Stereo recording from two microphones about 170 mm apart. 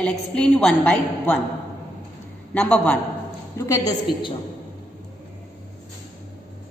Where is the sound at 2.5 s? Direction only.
5° left (ahead or behind).